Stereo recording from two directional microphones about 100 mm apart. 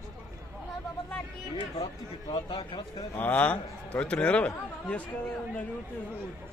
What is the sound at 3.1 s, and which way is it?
A man's voice, 15° left (ahead or behind).